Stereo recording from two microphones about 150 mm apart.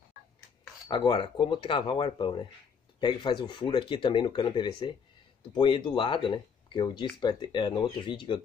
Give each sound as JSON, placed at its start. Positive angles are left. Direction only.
{"t": 0.8, "sound": "speech", "side_deg": 30}